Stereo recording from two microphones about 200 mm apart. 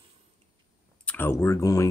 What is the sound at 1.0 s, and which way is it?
Speech, 10° left (ahead or behind).